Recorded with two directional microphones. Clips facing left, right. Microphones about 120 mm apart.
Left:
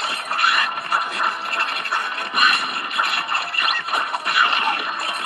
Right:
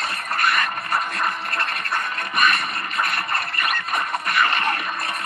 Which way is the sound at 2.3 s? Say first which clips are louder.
Even; 5° left (ahead or behind).